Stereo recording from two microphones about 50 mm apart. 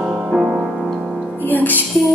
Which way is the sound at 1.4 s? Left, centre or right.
Left.